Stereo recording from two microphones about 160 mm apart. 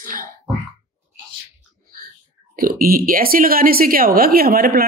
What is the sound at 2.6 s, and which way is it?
A woman's voice, 65° right (ahead or behind).